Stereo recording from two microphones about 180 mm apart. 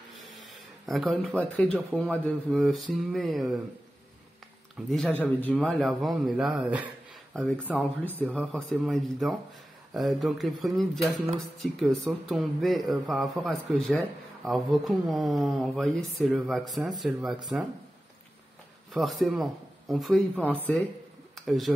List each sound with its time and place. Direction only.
0.5 s speech: centre (ahead or behind)
4.7 s speech: centre (ahead or behind)
18.9 s speech: centre (ahead or behind)